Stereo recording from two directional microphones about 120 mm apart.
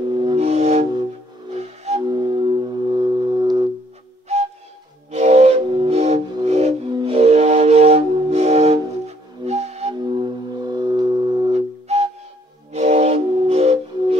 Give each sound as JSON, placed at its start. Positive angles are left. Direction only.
{"t": 0.1, "sound": "music", "side_deg": -40}
{"t": 0.4, "sound": "music", "side_deg": -60}
{"t": 2.0, "sound": "music", "side_deg": -35}
{"t": 4.3, "sound": "music", "side_deg": -65}
{"t": 6.9, "sound": "music", "side_deg": -40}
{"t": 7.2, "sound": "music", "side_deg": -60}
{"t": 9.9, "sound": "music", "side_deg": -40}
{"t": 11.5, "sound": "music", "side_deg": -60}
{"t": 12.7, "sound": "flute", "side_deg": -65}